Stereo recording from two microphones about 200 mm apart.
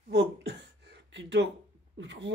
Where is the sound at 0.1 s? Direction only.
55° right (ahead or behind).